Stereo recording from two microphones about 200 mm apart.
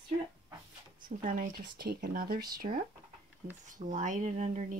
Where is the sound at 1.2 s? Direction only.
40° right (ahead or behind).